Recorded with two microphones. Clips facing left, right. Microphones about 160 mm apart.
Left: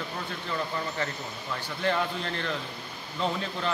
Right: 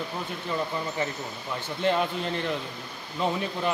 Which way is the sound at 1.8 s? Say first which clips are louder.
Right 3 dB; 20° right (ahead or behind).